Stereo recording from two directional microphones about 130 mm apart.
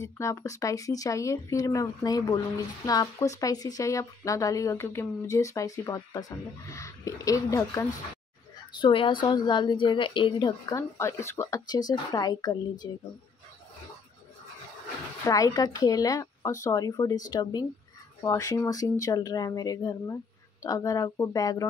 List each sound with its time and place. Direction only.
0.0 s speech: 25° left (ahead or behind)
8.8 s a woman's voice: 45° left (ahead or behind)
10.8 s speech: 20° left (ahead or behind)
15.2 s speech: 25° left (ahead or behind)